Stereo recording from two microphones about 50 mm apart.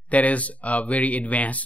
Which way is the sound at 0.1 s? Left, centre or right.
Left.